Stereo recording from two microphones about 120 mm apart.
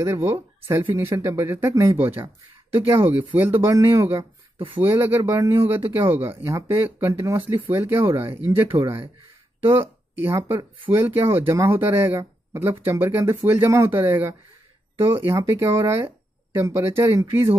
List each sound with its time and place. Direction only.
0.0 s speech: 20° right (ahead or behind)
4.2 s a sound: 45° right (ahead or behind)
4.7 s speech: 15° right (ahead or behind)
10.2 s speech: 20° right (ahead or behind)